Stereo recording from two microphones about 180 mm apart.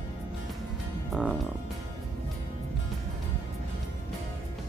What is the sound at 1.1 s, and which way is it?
Speech, 5° right (ahead or behind).